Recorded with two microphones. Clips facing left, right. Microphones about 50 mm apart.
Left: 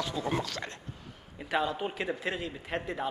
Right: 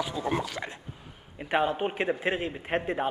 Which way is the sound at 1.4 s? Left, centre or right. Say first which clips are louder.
Right 4 dB; right.